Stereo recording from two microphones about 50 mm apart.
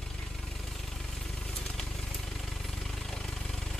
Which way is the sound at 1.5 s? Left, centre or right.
Centre.